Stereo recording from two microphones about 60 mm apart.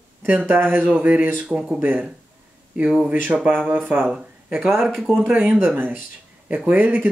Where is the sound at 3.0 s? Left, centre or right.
Right.